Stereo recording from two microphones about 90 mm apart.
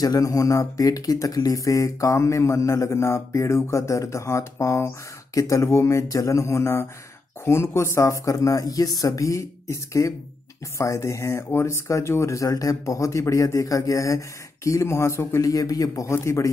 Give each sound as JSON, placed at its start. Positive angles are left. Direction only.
{"t": 0.0, "sound": "speech", "side_deg": 40}